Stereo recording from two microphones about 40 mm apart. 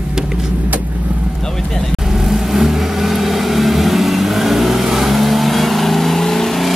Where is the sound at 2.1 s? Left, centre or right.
Centre.